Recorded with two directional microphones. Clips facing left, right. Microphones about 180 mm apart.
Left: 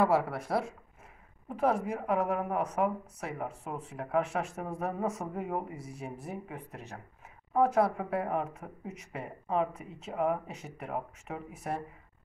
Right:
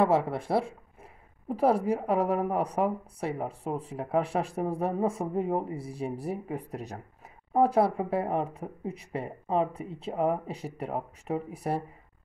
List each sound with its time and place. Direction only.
0.0 s a woman's voice: 25° right (ahead or behind)